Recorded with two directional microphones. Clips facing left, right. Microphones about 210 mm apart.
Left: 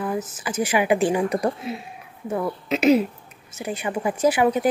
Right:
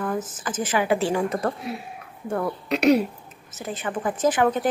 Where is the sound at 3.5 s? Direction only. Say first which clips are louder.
Left 2 dB; 10° left (ahead or behind).